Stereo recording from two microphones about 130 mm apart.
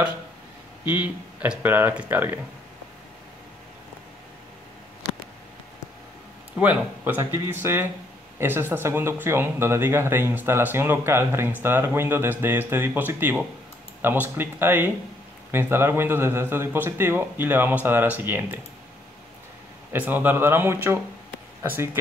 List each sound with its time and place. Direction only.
0.8 s speech: 15° right (ahead or behind)
6.6 s speech: 15° right (ahead or behind)
19.9 s speech: 15° right (ahead or behind)